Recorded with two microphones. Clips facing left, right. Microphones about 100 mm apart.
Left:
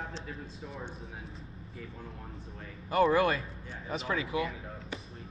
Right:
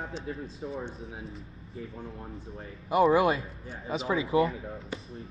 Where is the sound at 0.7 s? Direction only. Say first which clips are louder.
Right 7 dB; centre (ahead or behind).